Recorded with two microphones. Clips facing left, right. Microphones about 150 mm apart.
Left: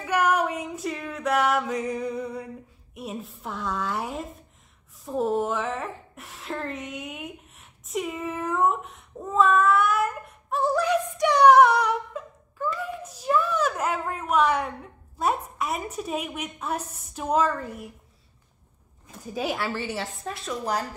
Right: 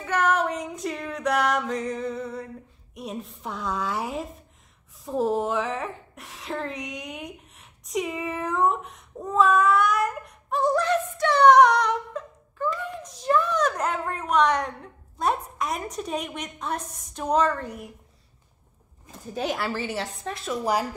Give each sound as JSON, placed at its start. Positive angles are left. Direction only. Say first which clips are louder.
{"t": 0.0, "sound": "female singing", "louder": "even", "side_deg": 10}
{"t": 2.9, "sound": "a woman's voice", "louder": "right 1 dB", "side_deg": 5}
{"t": 5.0, "sound": "a sound", "louder": "right 1 dB", "side_deg": 0}
{"t": 15.1, "sound": "a woman's voice", "louder": "even", "side_deg": 5}
{"t": 19.0, "sound": "a woman's voice", "louder": "even", "side_deg": 5}